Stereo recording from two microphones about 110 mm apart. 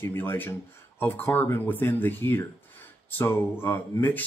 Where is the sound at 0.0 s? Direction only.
20° left (ahead or behind).